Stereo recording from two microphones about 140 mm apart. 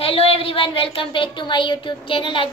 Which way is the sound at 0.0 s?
45° left (ahead or behind).